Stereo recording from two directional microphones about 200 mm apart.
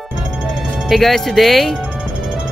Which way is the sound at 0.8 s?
Centre (ahead or behind).